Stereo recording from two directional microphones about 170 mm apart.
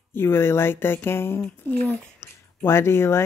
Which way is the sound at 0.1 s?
15° left (ahead or behind).